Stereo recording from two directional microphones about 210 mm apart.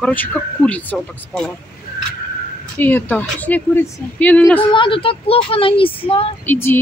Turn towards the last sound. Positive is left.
turn(degrees=10)  # may be behind; listen again after turning